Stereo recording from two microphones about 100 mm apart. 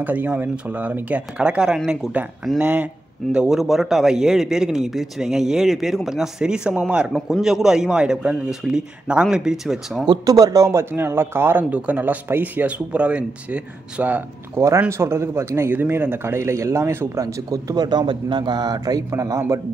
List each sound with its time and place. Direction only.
0.0 s a man's voice: 15° right (ahead or behind)
7.1 s speech: centre (ahead or behind)
10.0 s speech: 35° right (ahead or behind); by 14.6 s 15° right (ahead or behind)
14.9 s speech: 25° right (ahead or behind)